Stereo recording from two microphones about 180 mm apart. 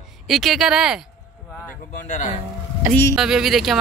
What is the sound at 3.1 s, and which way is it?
Speech, centre (ahead or behind).